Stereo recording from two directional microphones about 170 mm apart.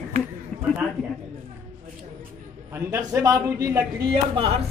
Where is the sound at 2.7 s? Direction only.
15° right (ahead or behind).